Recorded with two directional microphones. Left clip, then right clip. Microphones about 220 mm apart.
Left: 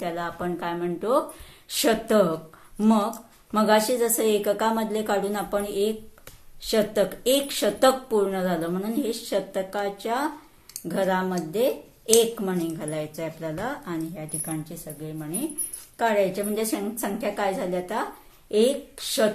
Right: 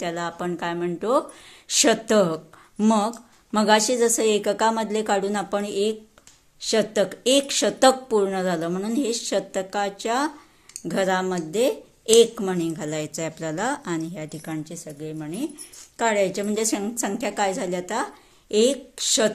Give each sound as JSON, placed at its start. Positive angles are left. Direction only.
{"t": 0.0, "sound": "a woman's voice", "side_deg": -40}